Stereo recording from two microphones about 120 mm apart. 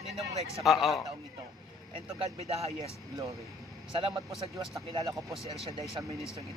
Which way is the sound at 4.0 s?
50° right (ahead or behind).